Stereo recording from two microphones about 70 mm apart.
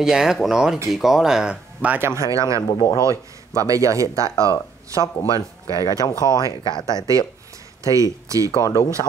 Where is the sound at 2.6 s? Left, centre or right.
Left.